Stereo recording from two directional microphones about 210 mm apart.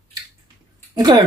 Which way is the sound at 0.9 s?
20° right (ahead or behind).